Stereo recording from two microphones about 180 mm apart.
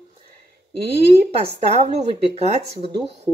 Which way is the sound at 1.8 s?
35° right (ahead or behind).